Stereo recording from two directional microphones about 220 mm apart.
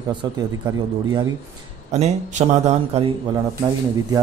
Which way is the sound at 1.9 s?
30° right (ahead or behind).